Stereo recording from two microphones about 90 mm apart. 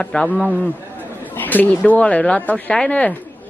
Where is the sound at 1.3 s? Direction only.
20° left (ahead or behind).